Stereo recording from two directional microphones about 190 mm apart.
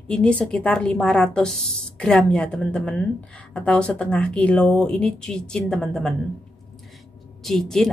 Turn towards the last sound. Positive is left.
turn(degrees=0)  # may be behind; listen again after turning